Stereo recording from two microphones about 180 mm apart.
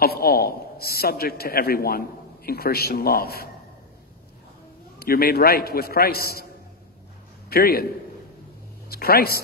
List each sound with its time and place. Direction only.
0.0 s a man's voice: 60° left (ahead or behind)
4.9 s a man's voice: 55° left (ahead or behind)
7.4 s a man's voice: 60° left (ahead or behind)
8.8 s speech: 60° left (ahead or behind)